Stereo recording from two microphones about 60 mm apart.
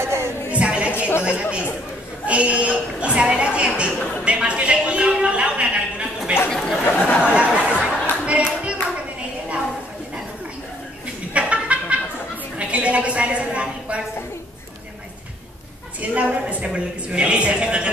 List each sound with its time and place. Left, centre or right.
0.0 s a sound: right
0.5 s a sound: right
1.2 s a woman's voice: centre
6.5 s speech: centre
6.9 s speech: left
7.2 s chatter: right
11.3 s a sound: right
12.5 s a woman's voice: right
16.0 s a woman's voice: right